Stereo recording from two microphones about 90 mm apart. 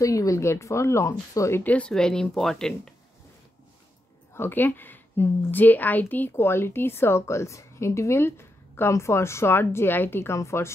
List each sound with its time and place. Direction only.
0.0 s speech: 35° left (ahead or behind)
1.6 s speech: 15° left (ahead or behind)
4.3 s a woman's voice: 25° left (ahead or behind)